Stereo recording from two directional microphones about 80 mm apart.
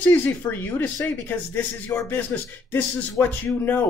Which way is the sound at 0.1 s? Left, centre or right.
Left.